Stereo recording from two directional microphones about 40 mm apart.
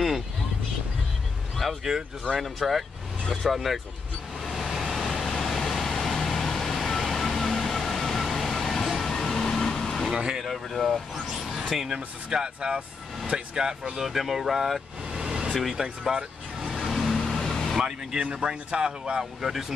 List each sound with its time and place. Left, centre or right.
1.6 s speech: centre
4.5 s vehicle: centre
10.1 s speech: centre
10.4 s speech: centre
11.9 s speech: right
14.0 s speech: centre
15.1 s vehicle: centre
15.7 s speech: centre
16.7 s vehicle: centre
17.7 s speech: centre